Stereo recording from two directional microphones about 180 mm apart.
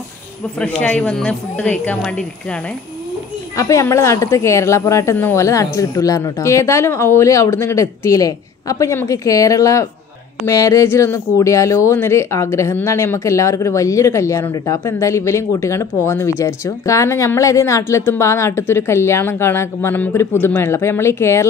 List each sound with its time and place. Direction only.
0.6 s speech: 5° left (ahead or behind)
3.5 s speech: 15° left (ahead or behind)